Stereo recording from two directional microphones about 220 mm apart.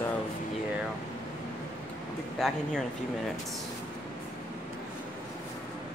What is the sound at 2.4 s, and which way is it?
Speech, centre (ahead or behind).